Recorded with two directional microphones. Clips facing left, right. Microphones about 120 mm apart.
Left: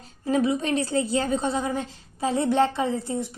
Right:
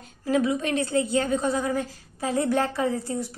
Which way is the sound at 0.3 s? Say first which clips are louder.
Left 1 dB; 30° left (ahead or behind).